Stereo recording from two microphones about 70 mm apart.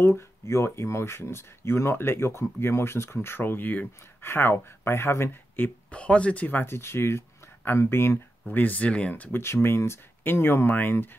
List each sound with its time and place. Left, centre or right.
0.0 s speech: left
5.9 s speech: centre; by 8.2 s left
8.5 s speech: left
9.1 s speech: left